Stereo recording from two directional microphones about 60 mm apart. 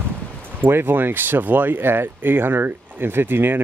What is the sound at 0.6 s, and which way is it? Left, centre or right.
Speech, right.